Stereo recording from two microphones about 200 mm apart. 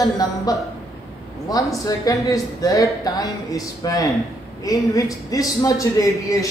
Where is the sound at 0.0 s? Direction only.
15° left (ahead or behind).